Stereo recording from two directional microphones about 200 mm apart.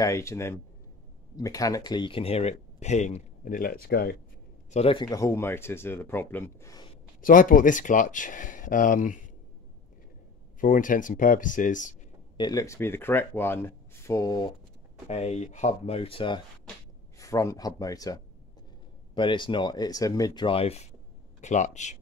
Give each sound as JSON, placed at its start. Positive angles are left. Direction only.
{"t": 0.0, "sound": "speech", "side_deg": 15}
{"t": 4.6, "sound": "speech", "side_deg": 30}
{"t": 7.2, "sound": "speech", "side_deg": 45}
{"t": 10.6, "sound": "speech", "side_deg": 40}
{"t": 12.4, "sound": "speech", "side_deg": 20}
{"t": 15.0, "sound": "speech", "side_deg": 30}
{"t": 17.2, "sound": "speech", "side_deg": 15}